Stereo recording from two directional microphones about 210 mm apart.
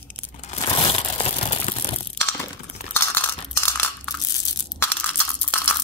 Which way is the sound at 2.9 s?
10° left (ahead or behind).